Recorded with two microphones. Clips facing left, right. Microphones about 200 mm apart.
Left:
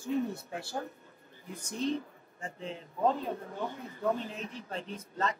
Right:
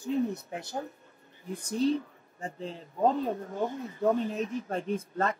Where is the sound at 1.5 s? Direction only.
35° right (ahead or behind).